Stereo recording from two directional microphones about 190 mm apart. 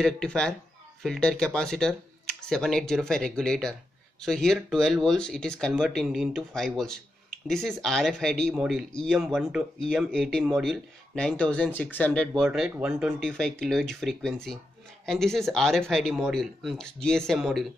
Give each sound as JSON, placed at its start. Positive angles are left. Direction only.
{"t": 0.0, "sound": "speech", "side_deg": 5}